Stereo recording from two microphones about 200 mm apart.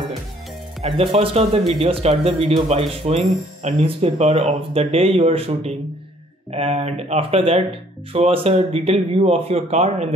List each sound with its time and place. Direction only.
0.8 s speech: 30° right (ahead or behind)